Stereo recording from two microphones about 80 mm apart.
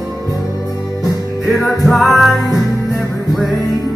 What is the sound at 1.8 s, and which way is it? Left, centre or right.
Music, centre.